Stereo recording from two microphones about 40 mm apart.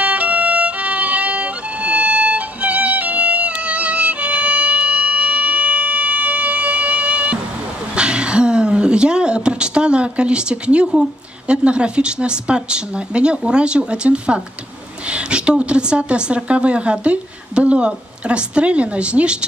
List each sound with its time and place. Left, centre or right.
0.0 s violin: right
7.9 s a sound: right
13.4 s a woman's voice: right